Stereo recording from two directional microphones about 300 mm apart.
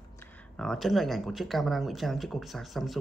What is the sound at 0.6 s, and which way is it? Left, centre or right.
Speech, centre.